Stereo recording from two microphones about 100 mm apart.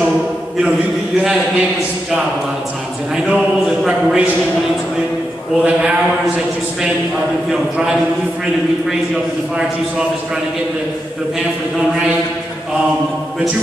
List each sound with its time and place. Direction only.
3.8 s a man's voice: 5° right (ahead or behind)
5.6 s a man's voice: 5° right (ahead or behind)